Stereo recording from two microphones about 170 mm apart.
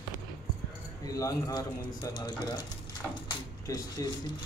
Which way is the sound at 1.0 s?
20° left (ahead or behind).